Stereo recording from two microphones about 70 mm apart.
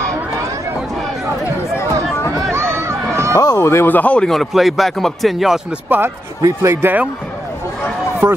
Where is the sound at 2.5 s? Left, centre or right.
Right.